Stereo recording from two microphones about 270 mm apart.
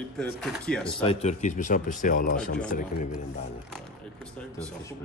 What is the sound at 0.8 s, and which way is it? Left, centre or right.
Speech, centre.